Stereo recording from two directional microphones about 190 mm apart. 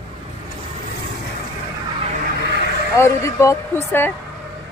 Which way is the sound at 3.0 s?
15° left (ahead or behind).